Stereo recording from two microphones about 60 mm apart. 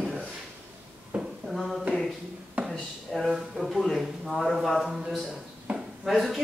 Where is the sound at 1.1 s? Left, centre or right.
Centre.